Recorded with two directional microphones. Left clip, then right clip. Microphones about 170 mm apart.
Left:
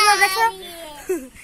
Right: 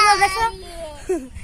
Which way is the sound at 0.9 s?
60° right (ahead or behind).